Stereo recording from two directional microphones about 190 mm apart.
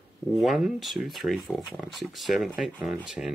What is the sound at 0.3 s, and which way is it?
Speech, centre (ahead or behind).